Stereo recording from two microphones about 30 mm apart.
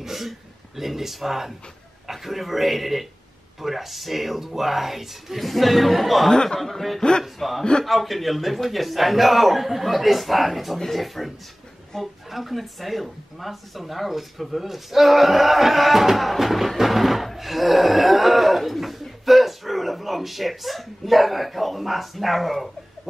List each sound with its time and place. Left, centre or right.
0.0 s a man's voice: centre
6.3 s speech: left
6.6 s a man's voice: centre
7.0 s speech: left
7.3 s a man's voice: centre